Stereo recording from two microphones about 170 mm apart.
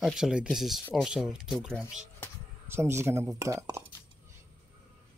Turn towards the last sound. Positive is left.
turn(degrees=-15)  # may be behind; listen again after turning